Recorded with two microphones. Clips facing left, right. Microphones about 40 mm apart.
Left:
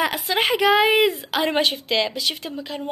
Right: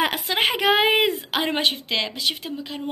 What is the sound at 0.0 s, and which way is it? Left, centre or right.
Speech, right.